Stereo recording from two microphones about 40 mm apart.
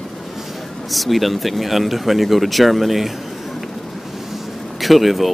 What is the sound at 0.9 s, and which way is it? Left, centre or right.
Speech, centre.